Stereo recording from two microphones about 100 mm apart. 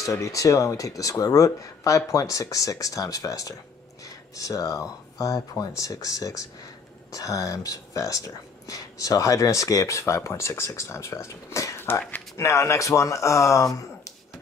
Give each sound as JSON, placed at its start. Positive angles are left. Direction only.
{"t": 0.0, "sound": "speech", "side_deg": 35}